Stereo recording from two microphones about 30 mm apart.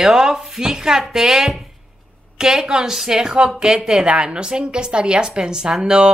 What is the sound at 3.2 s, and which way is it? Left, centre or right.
A woman's voice, right.